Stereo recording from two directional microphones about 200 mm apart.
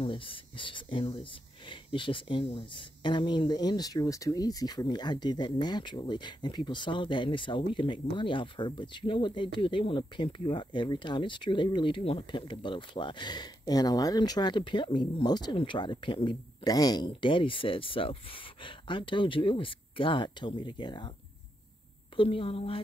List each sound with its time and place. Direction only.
0.0 s speech: 25° left (ahead or behind)
22.1 s speech: 25° left (ahead or behind)